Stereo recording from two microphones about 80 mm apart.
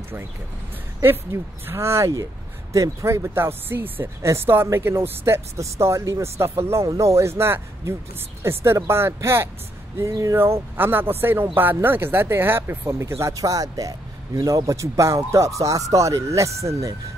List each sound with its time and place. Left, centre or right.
1.0 s speech: right
10.3 s speech: right